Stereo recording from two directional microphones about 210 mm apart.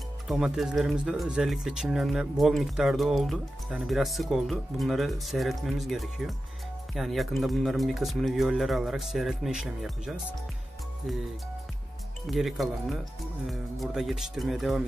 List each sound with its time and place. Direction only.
0.3 s speech: centre (ahead or behind)
12.3 s speech: centre (ahead or behind)